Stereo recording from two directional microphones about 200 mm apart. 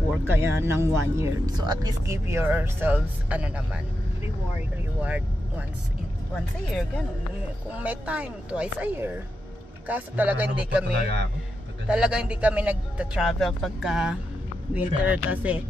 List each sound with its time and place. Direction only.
0.3 s speech: 10° right (ahead or behind)
5.0 s speech: 10° right (ahead or behind)
7.7 s speech: 5° right (ahead or behind)
10.9 s a man's voice: 55° right (ahead or behind)
11.9 s speech: 5° right (ahead or behind)